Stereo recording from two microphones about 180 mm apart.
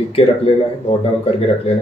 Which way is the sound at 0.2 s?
35° left (ahead or behind).